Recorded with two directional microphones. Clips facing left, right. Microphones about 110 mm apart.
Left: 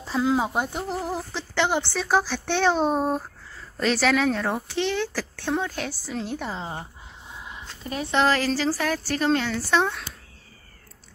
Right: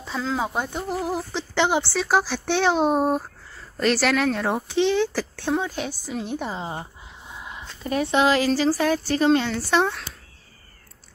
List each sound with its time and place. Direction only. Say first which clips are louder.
0.4 s speech: left 1 dB; 5° left (ahead or behind)
0.8 s speech: right 2 dB; 5° right (ahead or behind)
1.3 s speech: right 2 dB; 20° right (ahead or behind)
3.8 s a woman's voice: right 1 dB; centre (ahead or behind)
4.5 s speech: right 4 dB; 20° right (ahead or behind)
8.1 s speech: right 1 dB; 15° right (ahead or behind)